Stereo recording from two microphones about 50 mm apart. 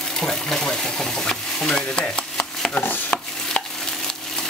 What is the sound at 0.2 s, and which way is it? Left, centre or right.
Stir, centre.